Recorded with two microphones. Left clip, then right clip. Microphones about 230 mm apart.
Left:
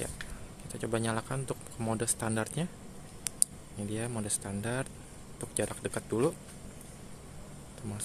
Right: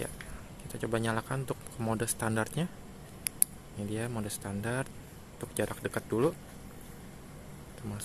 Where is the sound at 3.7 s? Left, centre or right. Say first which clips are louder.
Even; centre.